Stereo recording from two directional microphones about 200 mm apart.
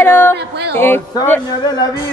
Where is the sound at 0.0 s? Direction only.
10° left (ahead or behind).